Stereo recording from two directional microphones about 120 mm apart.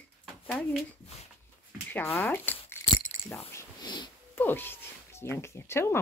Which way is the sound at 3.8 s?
35° left (ahead or behind).